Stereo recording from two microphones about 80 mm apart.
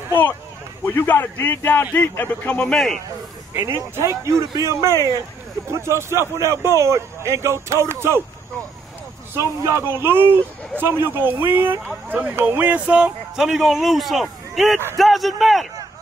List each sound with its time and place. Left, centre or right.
0.1 s a man's voice: left; by 3.0 s centre
4.2 s a man's voice: right
9.3 s a man's voice: right; by 15.6 s centre